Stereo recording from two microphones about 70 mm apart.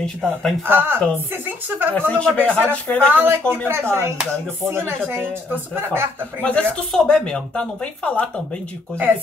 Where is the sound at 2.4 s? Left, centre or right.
Right.